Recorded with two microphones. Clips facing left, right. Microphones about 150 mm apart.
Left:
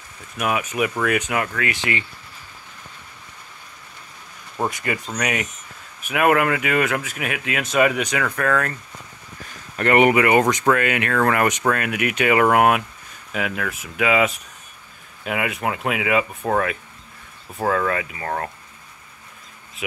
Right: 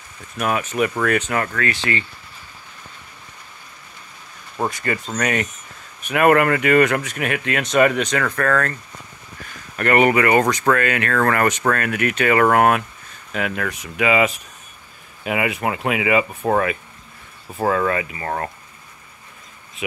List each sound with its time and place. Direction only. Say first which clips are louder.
0.4 s speech: right 2 dB; 10° left (ahead or behind)
4.6 s speech: right 2 dB; 15° left (ahead or behind)
9.8 s speech: even; 20° left (ahead or behind); by 18.5 s centre (ahead or behind)